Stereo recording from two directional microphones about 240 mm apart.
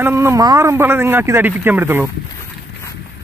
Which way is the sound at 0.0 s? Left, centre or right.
Centre.